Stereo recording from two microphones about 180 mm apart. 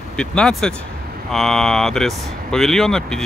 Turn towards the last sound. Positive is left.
turn(degrees=5)  # may be behind; listen again after turning